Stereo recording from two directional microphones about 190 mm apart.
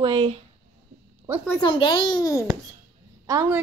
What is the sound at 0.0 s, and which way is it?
Speech, 25° right (ahead or behind).